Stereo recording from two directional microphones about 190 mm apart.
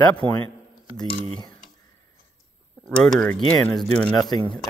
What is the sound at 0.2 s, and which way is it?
Speech, 25° right (ahead or behind).